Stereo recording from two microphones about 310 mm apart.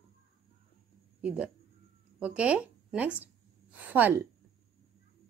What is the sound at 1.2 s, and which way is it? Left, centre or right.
A woman's voice, centre.